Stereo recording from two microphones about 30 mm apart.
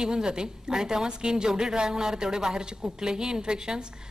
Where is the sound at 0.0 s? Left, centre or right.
Right.